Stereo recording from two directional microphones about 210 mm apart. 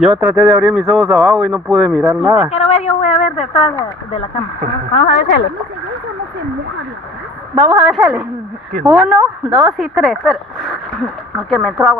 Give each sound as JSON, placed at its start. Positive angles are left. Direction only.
{"t": 0.0, "sound": "speech", "side_deg": -5}
{"t": 2.5, "sound": "a sound", "side_deg": 30}
{"t": 5.0, "sound": "speech", "side_deg": 50}
{"t": 7.5, "sound": "a woman's voice", "side_deg": -10}